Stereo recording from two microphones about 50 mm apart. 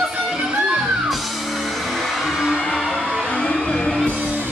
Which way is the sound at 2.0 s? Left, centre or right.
Centre.